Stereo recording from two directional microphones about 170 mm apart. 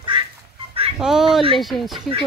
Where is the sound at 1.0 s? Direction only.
5° right (ahead or behind).